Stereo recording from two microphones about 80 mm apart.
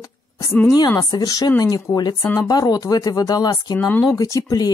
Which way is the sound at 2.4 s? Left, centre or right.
Left.